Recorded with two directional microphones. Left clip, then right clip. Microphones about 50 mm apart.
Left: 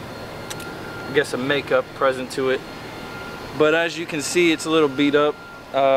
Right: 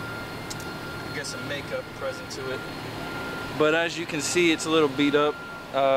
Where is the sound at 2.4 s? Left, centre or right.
Centre.